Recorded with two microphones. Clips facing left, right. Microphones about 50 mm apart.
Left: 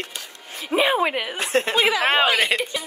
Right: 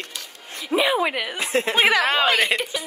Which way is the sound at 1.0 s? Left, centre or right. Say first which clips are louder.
Left 1 dB; centre.